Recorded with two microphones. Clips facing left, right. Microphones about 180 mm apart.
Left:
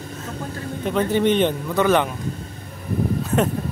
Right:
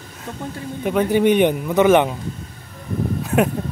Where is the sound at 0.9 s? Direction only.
10° right (ahead or behind).